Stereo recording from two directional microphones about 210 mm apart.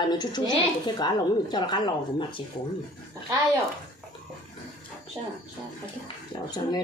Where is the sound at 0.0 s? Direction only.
20° left (ahead or behind).